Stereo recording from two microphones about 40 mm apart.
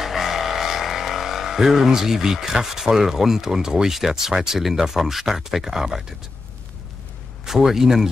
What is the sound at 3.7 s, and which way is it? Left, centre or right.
Speech, centre.